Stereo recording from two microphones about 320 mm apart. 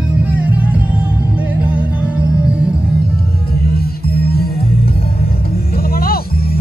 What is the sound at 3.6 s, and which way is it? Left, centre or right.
Music, left.